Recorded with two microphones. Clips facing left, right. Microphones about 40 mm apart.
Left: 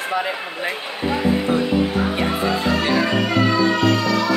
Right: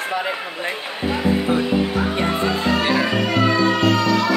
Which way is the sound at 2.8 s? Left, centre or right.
Centre.